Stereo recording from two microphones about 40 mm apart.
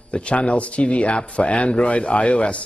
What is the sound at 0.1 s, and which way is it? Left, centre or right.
A man's voice, left.